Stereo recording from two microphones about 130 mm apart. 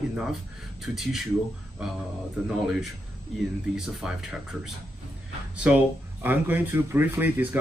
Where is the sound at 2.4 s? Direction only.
5° right (ahead or behind).